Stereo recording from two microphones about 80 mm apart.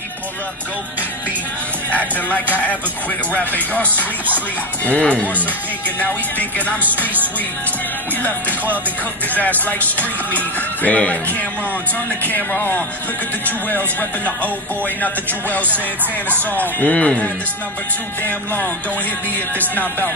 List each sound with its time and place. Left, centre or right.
1.9 s speech: centre
8.2 s speech: left
12.3 s speech: left
16.5 s speech: centre